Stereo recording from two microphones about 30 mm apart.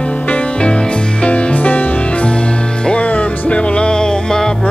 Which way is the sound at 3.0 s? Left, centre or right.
Left.